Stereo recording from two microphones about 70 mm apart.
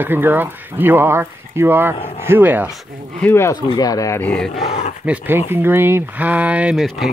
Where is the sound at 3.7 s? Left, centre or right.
Left.